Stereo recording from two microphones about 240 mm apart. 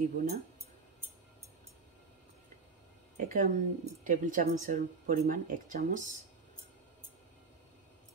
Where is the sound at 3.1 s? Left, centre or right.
Right.